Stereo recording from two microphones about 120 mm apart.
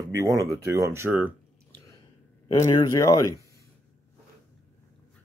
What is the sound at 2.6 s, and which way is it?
Speech, 25° left (ahead or behind).